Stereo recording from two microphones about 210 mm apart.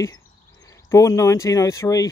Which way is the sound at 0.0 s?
15° left (ahead or behind).